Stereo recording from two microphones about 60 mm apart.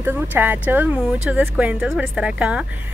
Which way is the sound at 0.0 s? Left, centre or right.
Right.